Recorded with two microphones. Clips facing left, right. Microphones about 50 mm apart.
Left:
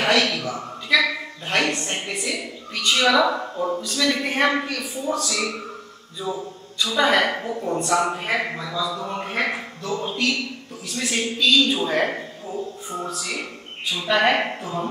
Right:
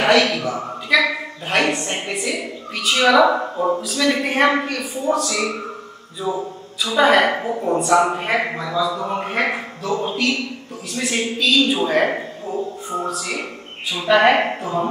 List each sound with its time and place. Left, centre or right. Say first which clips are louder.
0.0 s speech: right 4 dB; centre
3.8 s a man's voice: right 3 dB; centre